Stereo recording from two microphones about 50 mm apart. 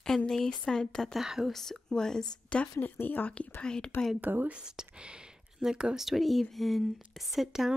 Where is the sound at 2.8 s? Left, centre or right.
Left.